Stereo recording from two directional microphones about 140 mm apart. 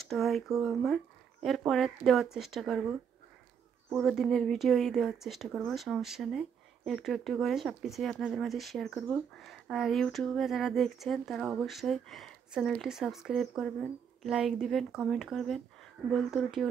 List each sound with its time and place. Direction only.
0.0 s speech: centre (ahead or behind)